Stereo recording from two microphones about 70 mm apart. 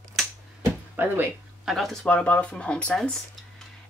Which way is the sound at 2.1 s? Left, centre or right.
Centre.